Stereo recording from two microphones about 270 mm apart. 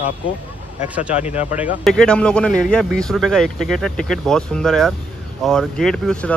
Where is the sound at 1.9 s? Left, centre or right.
Centre.